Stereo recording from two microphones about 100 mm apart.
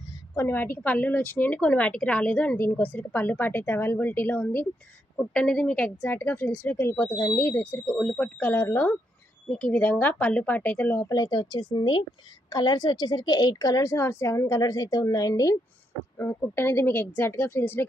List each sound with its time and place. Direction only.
0.3 s a woman's voice: 25° left (ahead or behind)
5.3 s a woman's voice: 10° left (ahead or behind); by 8.9 s 25° left (ahead or behind)
9.5 s a woman's voice: 15° left (ahead or behind)
11.0 s a woman's voice: 35° left (ahead or behind)
16.2 s speech: 25° left (ahead or behind)